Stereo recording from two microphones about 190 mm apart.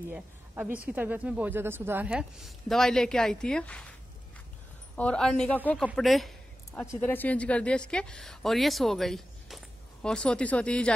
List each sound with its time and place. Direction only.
0.7 s speech: 10° right (ahead or behind)
4.9 s speech: 5° left (ahead or behind)